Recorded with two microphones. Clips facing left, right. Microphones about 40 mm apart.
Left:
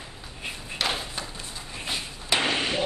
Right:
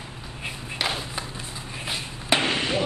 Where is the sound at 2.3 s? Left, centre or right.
Right.